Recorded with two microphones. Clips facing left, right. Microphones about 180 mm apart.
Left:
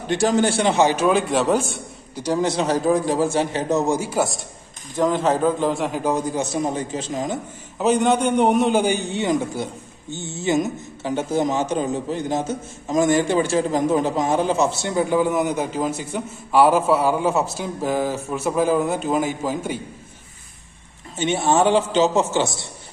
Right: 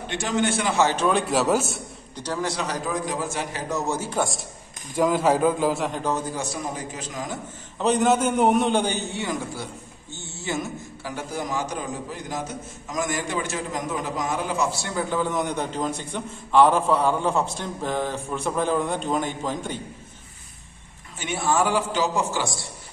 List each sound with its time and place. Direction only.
0.1 s a man's voice: 35° left (ahead or behind)
0.7 s a man's voice: 10° left (ahead or behind)
1.2 s a man's voice: 5° right (ahead or behind)
2.1 s a man's voice: 15° left (ahead or behind)
4.9 s a man's voice: 5° right (ahead or behind); by 7.3 s 25° left (ahead or behind)
7.8 s a man's voice: centre (ahead or behind)
21.2 s a man's voice: 25° left (ahead or behind)